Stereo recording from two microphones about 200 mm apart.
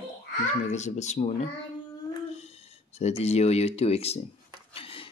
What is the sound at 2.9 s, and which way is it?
Speech, 35° left (ahead or behind).